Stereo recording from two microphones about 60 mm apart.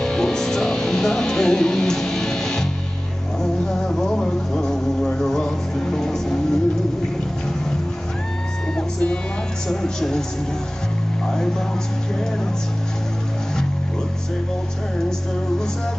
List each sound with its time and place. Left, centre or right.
0.0 s music: centre
3.8 s music: centre
8.7 s music: centre
9.7 s speech: centre
11.2 s speech: centre